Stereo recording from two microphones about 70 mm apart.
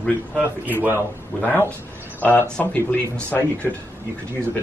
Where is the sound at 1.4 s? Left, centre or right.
Left.